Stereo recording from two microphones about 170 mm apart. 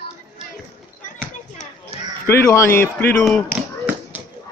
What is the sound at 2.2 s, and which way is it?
Speech, 15° left (ahead or behind).